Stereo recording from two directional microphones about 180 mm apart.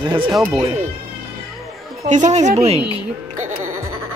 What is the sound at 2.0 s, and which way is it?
A woman's voice, 40° right (ahead or behind).